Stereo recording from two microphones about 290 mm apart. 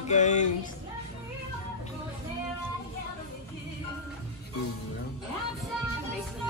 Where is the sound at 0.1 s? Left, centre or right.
Left.